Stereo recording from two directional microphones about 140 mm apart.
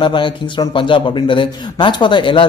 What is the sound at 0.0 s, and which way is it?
A man's voice, 35° left (ahead or behind).